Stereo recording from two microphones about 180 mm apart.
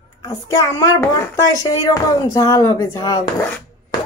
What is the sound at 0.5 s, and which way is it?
Speech, 15° left (ahead or behind).